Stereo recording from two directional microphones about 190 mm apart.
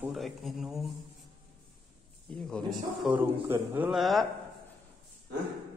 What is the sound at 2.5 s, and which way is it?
Speech, 5° right (ahead or behind).